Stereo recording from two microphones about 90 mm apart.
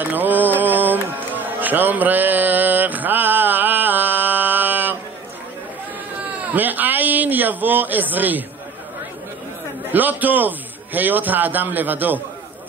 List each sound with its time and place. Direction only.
0.0 s mantra: 20° right (ahead or behind)
6.5 s a man's voice: 20° right (ahead or behind)
9.8 s a man's voice: 20° right (ahead or behind)